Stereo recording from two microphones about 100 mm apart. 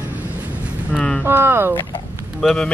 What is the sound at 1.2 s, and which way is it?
Speech, 20° right (ahead or behind).